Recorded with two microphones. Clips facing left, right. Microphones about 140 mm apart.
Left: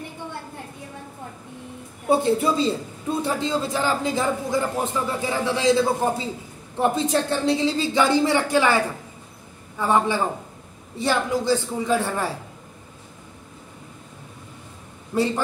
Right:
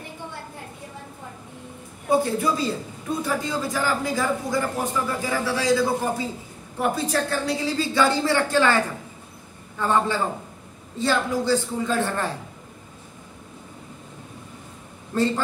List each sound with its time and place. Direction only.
2.0 s a woman's voice: 25° left (ahead or behind)
15.1 s a woman's voice: 10° left (ahead or behind)